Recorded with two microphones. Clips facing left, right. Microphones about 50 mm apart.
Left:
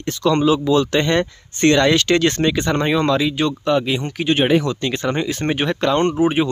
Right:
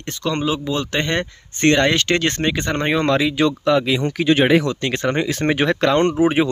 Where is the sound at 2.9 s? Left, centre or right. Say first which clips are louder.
Even; right.